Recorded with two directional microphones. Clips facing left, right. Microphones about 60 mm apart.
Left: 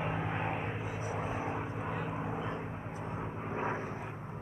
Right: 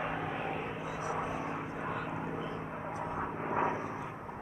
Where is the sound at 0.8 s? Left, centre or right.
Left.